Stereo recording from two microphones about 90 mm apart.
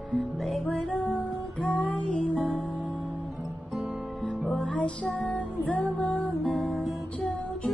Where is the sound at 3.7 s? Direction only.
5° right (ahead or behind); by 6.1 s 15° left (ahead or behind).